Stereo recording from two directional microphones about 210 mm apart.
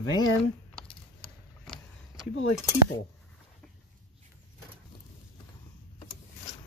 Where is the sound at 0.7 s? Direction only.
5° left (ahead or behind).